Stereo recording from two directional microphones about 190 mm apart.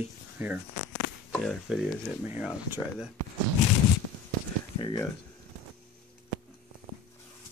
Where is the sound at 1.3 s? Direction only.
Centre (ahead or behind).